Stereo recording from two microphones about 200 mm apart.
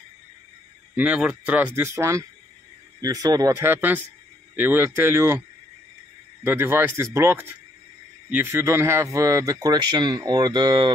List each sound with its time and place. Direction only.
0.9 s speech: 5° right (ahead or behind)
6.4 s speech: 10° right (ahead or behind)